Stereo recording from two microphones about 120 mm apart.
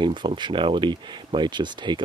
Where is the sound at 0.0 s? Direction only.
40° right (ahead or behind).